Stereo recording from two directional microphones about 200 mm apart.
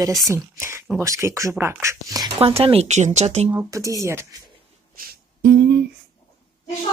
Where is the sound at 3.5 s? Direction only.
15° right (ahead or behind).